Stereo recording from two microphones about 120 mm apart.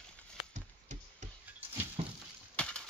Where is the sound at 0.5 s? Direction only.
85° right.